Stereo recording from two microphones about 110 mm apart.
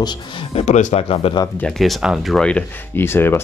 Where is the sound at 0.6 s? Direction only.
90° left; by 1.4 s 55° left (ahead or behind).